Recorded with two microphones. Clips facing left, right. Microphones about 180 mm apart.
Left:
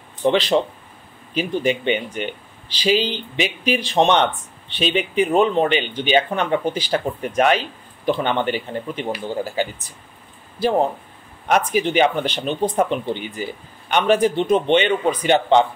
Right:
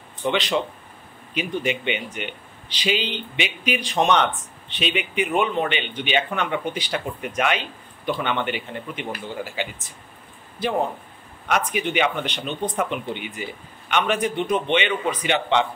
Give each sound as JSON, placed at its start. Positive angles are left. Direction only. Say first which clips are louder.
{"t": 0.2, "sound": "speech", "louder": "left 6 dB", "side_deg": 35}
{"t": 11.5, "sound": "speech", "louder": "left 5 dB", "side_deg": 35}